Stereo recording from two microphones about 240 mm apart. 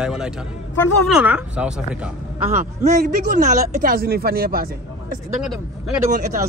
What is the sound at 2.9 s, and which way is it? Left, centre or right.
Speech, right.